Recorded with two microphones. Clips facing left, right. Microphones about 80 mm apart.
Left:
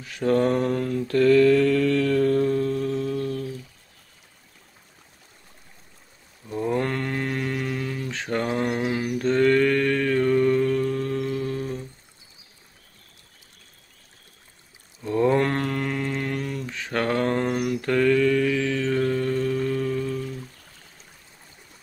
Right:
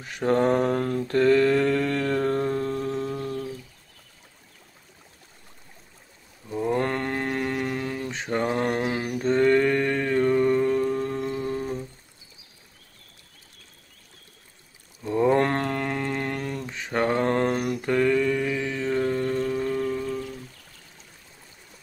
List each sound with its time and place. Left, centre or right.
0.2 s mantra: right
0.5 s mantra: right
1.0 s mantra: right
6.8 s mantra: right
8.1 s mantra: centre
8.5 s a sound: right
9.2 s mantra: right
15.0 s a sound: centre
15.3 s a sound: right
16.6 s mantra: right